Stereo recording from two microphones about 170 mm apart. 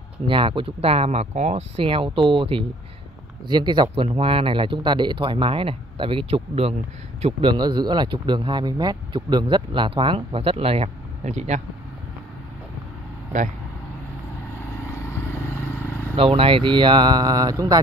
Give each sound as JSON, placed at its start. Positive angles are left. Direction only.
{"t": 0.3, "sound": "speech", "side_deg": -30}
{"t": 7.5, "sound": "speech", "side_deg": -25}
{"t": 14.7, "sound": "vehicle", "side_deg": 15}
{"t": 16.2, "sound": "speech", "side_deg": -35}